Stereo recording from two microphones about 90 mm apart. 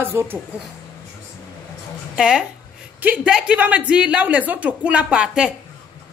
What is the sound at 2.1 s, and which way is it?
Speech, 10° right (ahead or behind).